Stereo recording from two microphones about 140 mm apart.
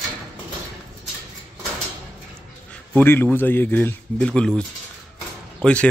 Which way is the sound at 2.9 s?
15° left (ahead or behind).